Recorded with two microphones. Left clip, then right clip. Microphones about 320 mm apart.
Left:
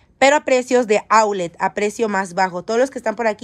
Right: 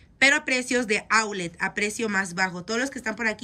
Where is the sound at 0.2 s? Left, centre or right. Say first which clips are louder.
Left 7 dB; centre.